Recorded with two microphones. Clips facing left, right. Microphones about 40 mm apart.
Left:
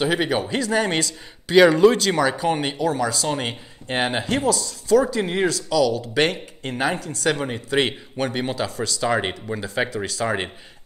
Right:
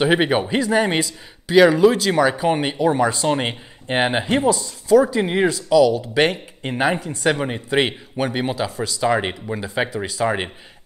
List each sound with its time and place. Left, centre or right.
0.0 s speech: right
1.5 s speech: centre